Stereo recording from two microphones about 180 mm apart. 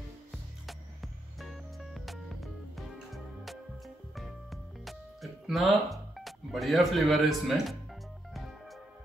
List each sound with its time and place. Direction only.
0.3 s music: centre (ahead or behind)